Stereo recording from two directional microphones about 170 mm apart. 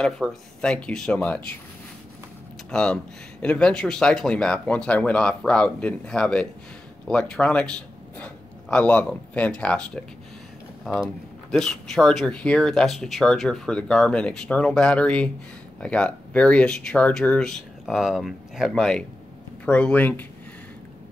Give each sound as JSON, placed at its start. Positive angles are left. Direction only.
{"t": 0.0, "sound": "speech", "side_deg": 5}
{"t": 2.7, "sound": "a man's voice", "side_deg": 5}